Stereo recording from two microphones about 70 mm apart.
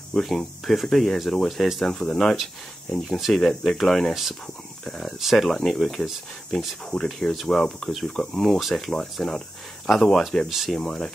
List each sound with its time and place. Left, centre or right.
0.1 s speech: centre
10.8 s speech: centre